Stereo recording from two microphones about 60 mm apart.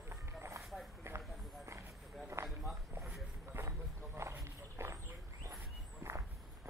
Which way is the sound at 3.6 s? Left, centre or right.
Right.